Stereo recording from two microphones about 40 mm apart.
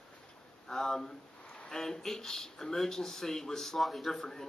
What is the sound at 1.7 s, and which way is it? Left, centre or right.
Speech, centre.